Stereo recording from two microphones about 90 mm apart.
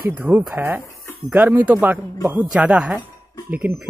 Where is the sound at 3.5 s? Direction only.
20° right (ahead or behind).